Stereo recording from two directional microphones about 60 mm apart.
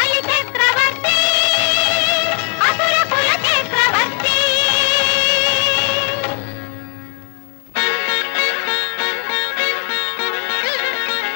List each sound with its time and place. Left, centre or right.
0.0 s music of bollywood: left
7.7 s music: left